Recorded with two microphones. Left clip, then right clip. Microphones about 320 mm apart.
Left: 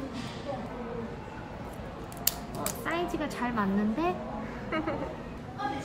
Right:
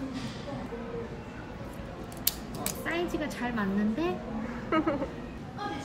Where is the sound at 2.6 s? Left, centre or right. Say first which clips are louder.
Even; left.